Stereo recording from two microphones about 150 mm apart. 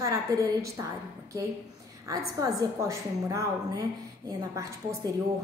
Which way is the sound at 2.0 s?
20° right (ahead or behind).